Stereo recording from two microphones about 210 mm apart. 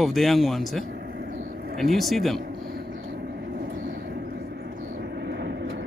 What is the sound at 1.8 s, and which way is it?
Speech, centre (ahead or behind).